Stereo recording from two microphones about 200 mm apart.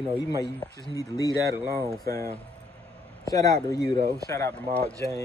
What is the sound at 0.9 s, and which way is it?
Speech, 15° left (ahead or behind).